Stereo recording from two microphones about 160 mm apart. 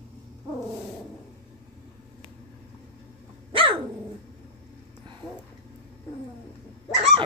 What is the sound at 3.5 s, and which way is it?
Dog, 30° right (ahead or behind).